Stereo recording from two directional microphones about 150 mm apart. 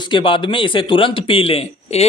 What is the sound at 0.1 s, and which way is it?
A man's voice, 35° left (ahead or behind).